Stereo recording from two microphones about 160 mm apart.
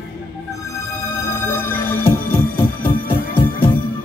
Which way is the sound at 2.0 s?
15° left (ahead or behind).